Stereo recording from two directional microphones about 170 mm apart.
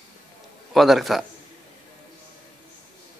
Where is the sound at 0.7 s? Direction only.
Centre (ahead or behind).